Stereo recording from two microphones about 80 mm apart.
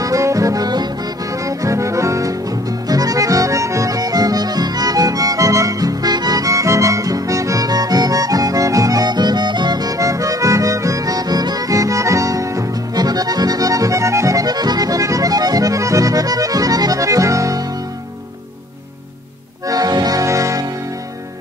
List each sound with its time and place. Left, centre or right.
0.0 s music: right
1.4 s accordion: right
19.7 s accordion: right